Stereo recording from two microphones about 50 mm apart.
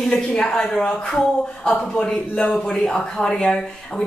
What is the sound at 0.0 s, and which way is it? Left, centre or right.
A man's voice, centre.